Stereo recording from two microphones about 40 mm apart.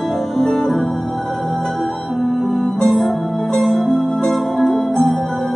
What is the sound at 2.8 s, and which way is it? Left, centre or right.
Music, centre.